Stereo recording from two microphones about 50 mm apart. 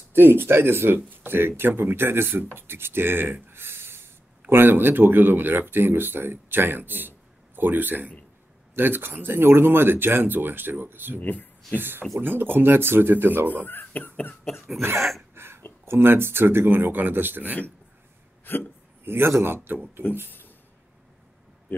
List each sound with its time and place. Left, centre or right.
0.1 s speech: right
11.1 s speech: left
11.7 s speech: right
13.7 s speech: left
14.8 s a sound: right
15.8 s speech: right
18.5 s speech: left
19.0 s speech: right